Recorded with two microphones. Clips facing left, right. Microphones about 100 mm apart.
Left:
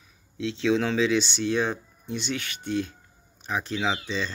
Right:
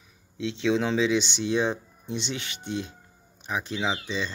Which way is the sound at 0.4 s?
15° right (ahead or behind).